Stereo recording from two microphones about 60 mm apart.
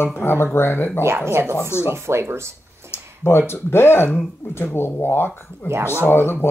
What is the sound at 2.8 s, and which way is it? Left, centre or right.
Speech, left.